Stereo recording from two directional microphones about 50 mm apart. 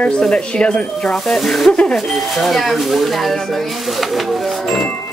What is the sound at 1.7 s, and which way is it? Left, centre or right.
Speech, left.